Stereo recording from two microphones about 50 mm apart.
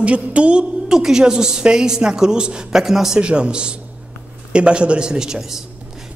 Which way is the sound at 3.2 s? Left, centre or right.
Right.